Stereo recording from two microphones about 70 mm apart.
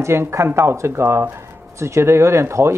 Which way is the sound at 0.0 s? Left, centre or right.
Right.